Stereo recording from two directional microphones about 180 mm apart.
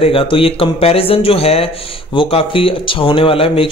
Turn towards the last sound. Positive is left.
turn(degrees=30)  # may be behind; listen again after turning